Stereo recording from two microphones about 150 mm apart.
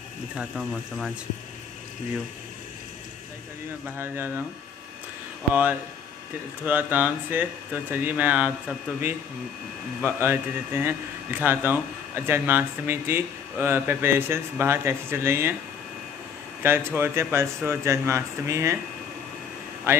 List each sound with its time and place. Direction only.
0.4 s speech: centre (ahead or behind)
3.8 s speech: 15° right (ahead or behind)
5.5 s speech: 10° right (ahead or behind)
16.6 s speech: 15° right (ahead or behind)
19.9 s speech: 15° right (ahead or behind)